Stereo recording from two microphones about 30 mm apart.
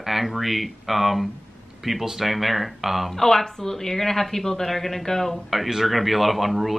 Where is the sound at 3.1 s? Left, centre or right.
Centre.